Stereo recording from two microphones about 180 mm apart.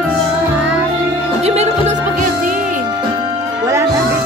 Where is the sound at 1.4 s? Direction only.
40° right (ahead or behind).